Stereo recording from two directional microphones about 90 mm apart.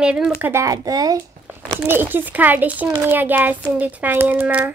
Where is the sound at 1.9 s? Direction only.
25° right (ahead or behind).